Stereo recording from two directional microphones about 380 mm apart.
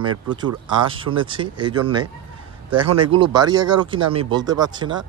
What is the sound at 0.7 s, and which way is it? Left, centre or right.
Speech, centre.